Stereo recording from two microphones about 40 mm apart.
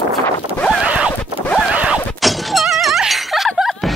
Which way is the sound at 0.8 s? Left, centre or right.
Right.